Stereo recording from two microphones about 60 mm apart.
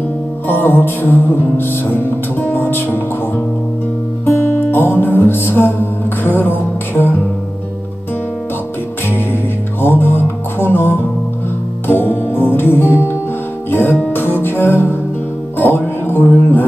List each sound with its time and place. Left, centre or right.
0.5 s music: left
2.6 s speech: left
4.3 s music: left
9.1 s music: left